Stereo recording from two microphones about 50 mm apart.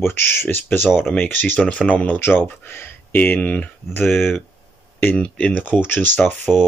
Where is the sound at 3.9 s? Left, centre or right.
Left.